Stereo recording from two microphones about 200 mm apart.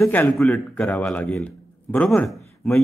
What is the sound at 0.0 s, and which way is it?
A man's voice, 5° left (ahead or behind).